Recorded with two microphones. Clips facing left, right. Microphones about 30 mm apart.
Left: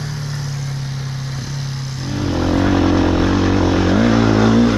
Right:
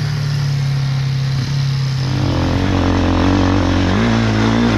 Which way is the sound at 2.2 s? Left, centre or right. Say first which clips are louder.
Left 1 dB; right.